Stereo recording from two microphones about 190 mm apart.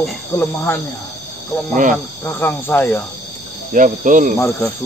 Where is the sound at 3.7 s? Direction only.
45° right (ahead or behind).